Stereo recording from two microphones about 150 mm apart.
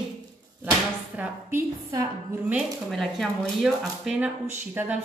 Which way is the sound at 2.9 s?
Centre (ahead or behind).